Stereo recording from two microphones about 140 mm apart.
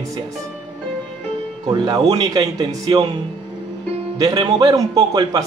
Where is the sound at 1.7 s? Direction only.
35° right (ahead or behind).